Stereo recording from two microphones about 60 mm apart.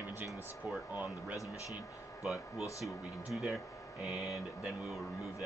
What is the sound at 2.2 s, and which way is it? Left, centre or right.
Speech, centre.